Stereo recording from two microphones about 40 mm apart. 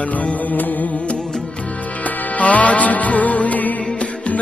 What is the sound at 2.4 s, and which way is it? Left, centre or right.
Music, left.